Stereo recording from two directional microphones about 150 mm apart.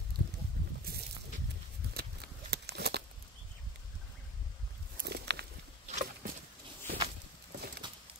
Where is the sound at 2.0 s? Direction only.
90° right.